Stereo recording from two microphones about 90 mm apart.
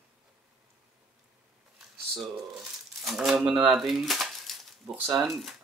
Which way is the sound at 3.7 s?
Centre (ahead or behind).